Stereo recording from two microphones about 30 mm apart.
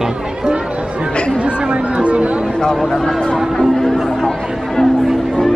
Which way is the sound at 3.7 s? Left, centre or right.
Centre.